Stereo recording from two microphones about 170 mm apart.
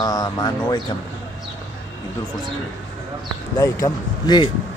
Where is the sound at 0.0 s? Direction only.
25° left (ahead or behind).